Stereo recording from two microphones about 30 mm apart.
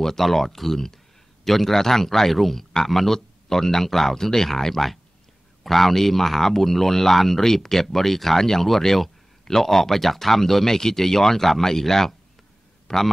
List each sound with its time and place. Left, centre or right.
0.0 s a man's voice: centre